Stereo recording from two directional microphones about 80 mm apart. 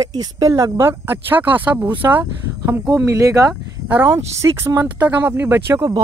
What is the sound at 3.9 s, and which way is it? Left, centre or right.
Speech, right.